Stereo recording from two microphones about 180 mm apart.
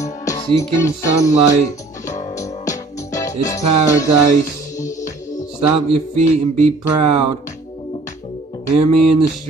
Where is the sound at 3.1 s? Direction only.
20° left (ahead or behind).